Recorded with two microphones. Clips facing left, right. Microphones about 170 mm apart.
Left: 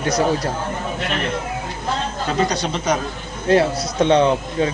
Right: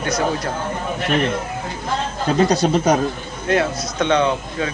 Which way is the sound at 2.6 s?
45° right (ahead or behind).